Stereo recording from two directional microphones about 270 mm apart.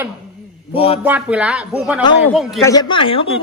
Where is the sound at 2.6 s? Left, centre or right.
Centre.